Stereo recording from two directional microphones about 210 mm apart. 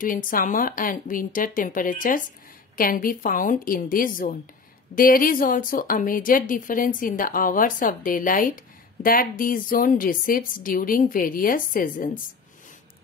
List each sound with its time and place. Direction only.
0.0 s a woman's voice: 40° left (ahead or behind)